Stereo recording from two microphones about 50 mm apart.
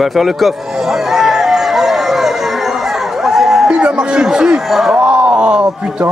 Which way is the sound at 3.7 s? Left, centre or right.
Centre.